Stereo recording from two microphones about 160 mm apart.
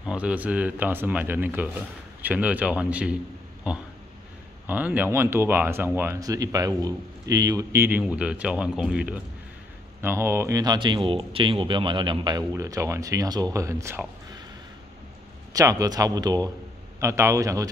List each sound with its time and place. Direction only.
0.0 s speech: 5° right (ahead or behind)
4.6 s speech: 10° right (ahead or behind)
15.5 s speech: 20° right (ahead or behind)